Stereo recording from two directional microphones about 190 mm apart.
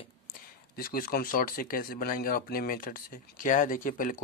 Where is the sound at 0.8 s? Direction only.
50° left (ahead or behind).